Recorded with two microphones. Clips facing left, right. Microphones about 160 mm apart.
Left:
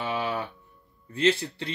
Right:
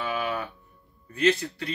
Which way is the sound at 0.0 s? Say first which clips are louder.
Even; 25° left (ahead or behind).